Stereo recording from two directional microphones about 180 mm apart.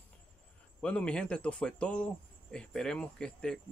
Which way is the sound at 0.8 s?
5° left (ahead or behind).